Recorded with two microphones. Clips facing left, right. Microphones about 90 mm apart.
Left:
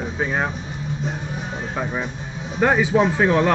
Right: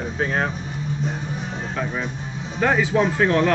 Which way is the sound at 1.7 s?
15° left (ahead or behind).